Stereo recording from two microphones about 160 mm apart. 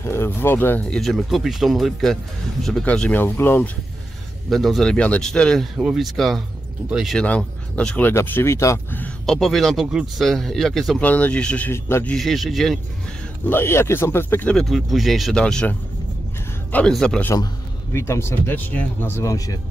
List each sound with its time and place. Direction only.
0.0 s speech: 15° left (ahead or behind)
4.5 s speech: centre (ahead or behind)
13.5 s speech: 15° left (ahead or behind)
16.7 s speech: 5° left (ahead or behind)
17.9 s speech: 15° left (ahead or behind)